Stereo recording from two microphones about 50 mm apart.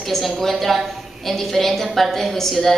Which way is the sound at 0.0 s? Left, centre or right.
Centre.